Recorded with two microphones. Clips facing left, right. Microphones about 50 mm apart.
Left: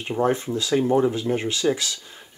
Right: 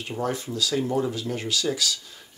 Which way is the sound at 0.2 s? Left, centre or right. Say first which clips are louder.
Left 5 dB; left.